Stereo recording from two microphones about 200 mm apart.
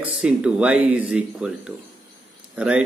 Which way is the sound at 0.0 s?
5° right (ahead or behind).